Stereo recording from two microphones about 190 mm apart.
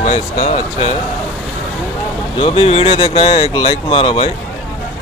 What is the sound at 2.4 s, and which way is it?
Speech, 30° left (ahead or behind).